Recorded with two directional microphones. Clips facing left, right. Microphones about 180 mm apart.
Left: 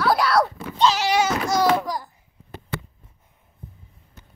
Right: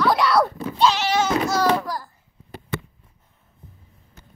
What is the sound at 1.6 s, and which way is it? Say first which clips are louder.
Speech: left 1 dB; 15° left (ahead or behind).